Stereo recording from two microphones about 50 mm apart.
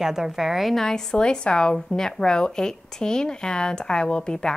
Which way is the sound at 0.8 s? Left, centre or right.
Centre.